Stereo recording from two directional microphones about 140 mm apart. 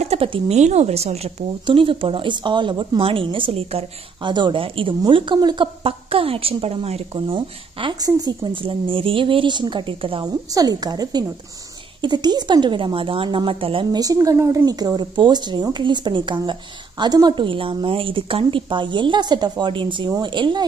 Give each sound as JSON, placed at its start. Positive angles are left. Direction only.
{"t": 0.0, "sound": "speech", "side_deg": -45}
{"t": 10.2, "sound": "a woman's voice", "side_deg": -25}
{"t": 13.9, "sound": "speech", "side_deg": -25}